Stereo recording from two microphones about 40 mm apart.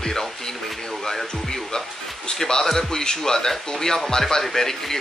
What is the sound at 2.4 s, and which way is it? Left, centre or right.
Speech, centre.